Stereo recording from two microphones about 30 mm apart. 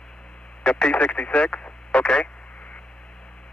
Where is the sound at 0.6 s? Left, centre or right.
Left.